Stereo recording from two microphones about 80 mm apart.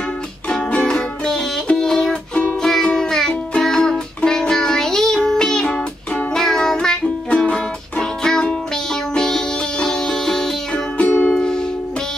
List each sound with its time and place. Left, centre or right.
0.5 s music: centre
11.1 s music: left
11.3 s music: centre